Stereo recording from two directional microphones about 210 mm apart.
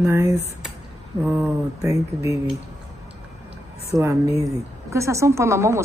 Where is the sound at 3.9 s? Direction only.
15° right (ahead or behind).